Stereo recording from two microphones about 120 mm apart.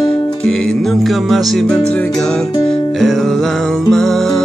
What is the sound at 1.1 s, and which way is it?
Music, centre (ahead or behind).